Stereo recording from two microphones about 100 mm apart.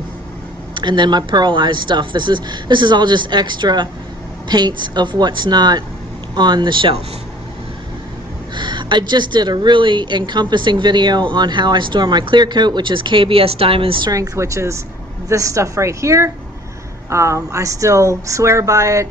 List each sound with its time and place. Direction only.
0.7 s speech: 50° right (ahead or behind)
8.5 s speech: 50° right (ahead or behind)
14.1 s speech: 35° right (ahead or behind)